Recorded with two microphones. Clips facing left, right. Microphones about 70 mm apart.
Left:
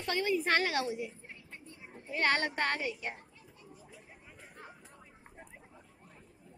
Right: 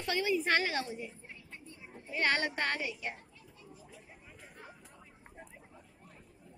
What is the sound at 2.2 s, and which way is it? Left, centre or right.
Speech, left.